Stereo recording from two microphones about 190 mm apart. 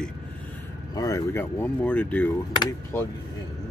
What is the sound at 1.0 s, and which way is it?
Speech, 15° left (ahead or behind).